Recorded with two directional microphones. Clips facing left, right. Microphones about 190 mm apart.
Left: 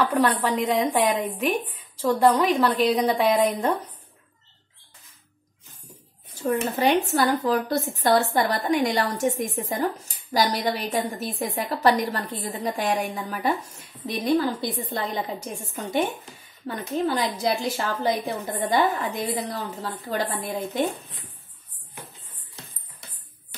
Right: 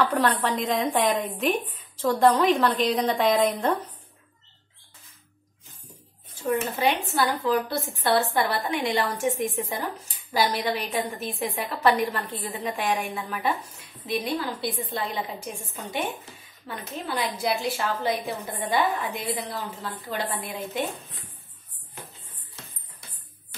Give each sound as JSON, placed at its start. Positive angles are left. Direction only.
{"t": 0.1, "sound": "a woman's voice", "side_deg": 10}
{"t": 6.4, "sound": "a woman's voice", "side_deg": 40}
{"t": 16.6, "sound": "a woman's voice", "side_deg": 45}